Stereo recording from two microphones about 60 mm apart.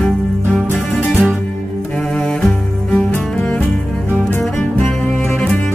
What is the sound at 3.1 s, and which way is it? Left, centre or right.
Music, left.